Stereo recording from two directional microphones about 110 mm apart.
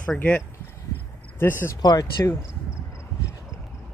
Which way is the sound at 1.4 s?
20° left (ahead or behind).